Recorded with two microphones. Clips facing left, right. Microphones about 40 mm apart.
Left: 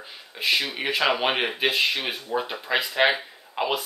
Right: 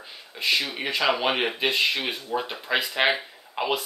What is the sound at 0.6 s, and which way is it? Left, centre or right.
Speech, centre.